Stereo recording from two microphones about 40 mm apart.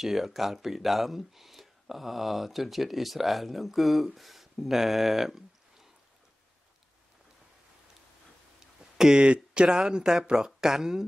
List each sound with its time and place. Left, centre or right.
0.0 s speech: centre
8.5 s a sound: centre
9.2 s speech: right